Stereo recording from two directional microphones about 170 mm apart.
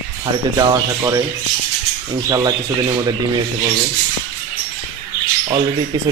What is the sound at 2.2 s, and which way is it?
Speech, 20° right (ahead or behind).